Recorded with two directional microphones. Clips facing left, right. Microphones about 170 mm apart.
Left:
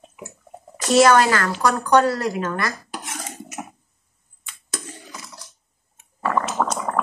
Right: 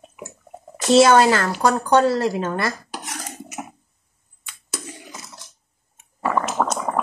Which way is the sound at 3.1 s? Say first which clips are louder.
Even; centre (ahead or behind).